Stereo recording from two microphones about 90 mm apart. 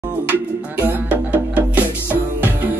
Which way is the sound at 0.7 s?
20° right (ahead or behind).